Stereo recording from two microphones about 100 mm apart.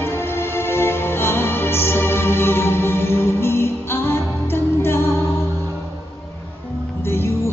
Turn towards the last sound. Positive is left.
turn(degrees=25)  # may be behind; listen again after turning